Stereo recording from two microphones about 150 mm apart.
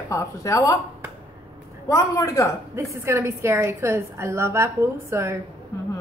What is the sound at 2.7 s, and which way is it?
A woman's voice, 15° right (ahead or behind).